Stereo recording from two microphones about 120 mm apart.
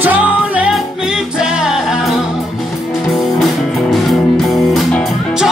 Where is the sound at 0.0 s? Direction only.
15° right (ahead or behind).